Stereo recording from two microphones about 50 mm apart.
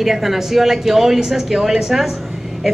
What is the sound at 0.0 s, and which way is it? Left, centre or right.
A woman's voice, centre.